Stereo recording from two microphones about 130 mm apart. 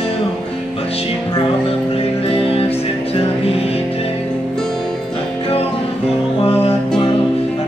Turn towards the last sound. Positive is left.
turn(degrees=50)  # may be behind; listen again after turning